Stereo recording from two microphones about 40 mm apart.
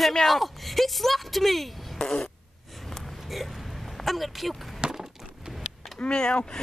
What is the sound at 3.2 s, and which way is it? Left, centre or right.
Hiccup, centre.